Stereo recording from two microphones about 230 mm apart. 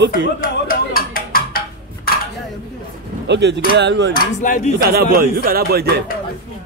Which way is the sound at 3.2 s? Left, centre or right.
Right.